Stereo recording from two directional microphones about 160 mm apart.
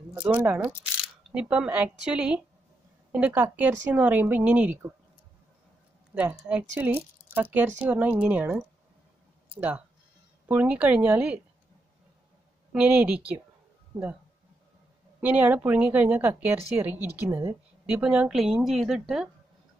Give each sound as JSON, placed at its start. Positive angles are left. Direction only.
{"t": 0.1, "sound": "a woman's voice", "side_deg": -10}
{"t": 6.1, "sound": "a woman's voice", "side_deg": -10}
{"t": 12.7, "sound": "a woman's voice", "side_deg": -10}
{"t": 15.1, "sound": "a woman's voice", "side_deg": -10}